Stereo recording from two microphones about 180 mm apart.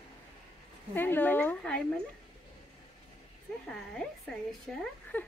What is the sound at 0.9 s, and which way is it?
Speech, 10° left (ahead or behind).